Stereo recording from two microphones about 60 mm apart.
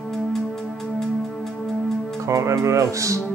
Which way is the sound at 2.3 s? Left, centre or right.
Right.